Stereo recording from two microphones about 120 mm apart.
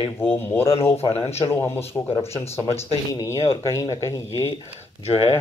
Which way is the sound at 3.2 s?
25° left (ahead or behind).